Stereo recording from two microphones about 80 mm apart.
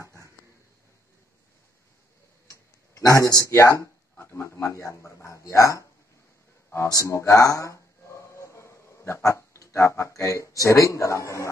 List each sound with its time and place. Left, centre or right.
0.0 s a sound: right
2.5 s speech: left
7.0 s speech: left